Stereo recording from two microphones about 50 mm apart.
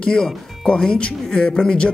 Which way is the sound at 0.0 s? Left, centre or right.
Centre.